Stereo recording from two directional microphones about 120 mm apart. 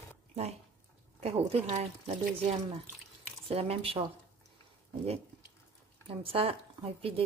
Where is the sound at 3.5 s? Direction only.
55° right (ahead or behind).